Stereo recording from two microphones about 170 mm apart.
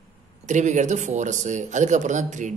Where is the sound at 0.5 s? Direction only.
45° right (ahead or behind).